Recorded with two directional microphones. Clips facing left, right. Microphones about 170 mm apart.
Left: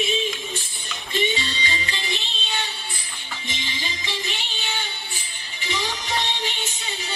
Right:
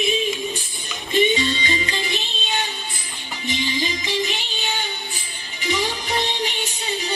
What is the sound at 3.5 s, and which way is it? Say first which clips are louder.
Music: right 10 dB; 15° right (ahead or behind).